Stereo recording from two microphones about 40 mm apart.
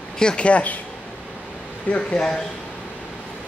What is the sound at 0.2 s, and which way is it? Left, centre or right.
Speech, left.